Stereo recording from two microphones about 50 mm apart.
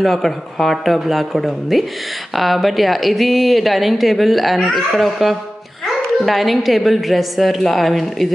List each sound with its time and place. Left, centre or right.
0.0 s speech: centre